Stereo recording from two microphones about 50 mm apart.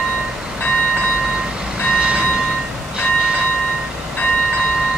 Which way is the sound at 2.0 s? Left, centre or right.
Right.